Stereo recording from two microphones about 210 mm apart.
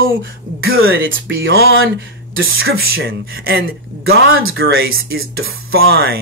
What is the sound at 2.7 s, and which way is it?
Speech, 45° right (ahead or behind).